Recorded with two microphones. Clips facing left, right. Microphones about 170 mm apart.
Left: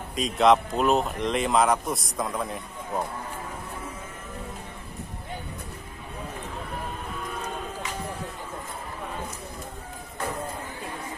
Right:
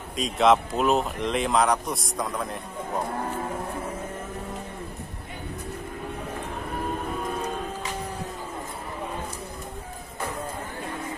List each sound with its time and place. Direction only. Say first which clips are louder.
0.1 s speech: even; centre (ahead or behind)